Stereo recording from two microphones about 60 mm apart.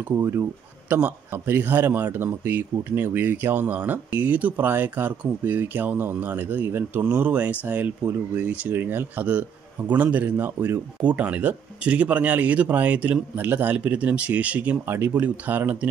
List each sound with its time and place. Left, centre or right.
0.2 s speech: right
0.8 s a man's voice: right
14.9 s speech: right
15.1 s speech: right